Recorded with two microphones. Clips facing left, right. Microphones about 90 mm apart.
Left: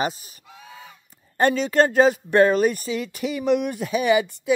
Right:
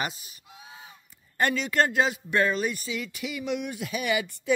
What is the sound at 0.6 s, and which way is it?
Goose, 75° left (ahead or behind).